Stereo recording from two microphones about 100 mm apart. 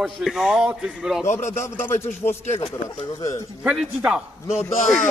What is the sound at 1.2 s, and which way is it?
Speech, 25° left (ahead or behind).